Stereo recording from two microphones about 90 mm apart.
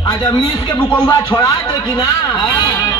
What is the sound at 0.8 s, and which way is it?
Speech, 60° left (ahead or behind).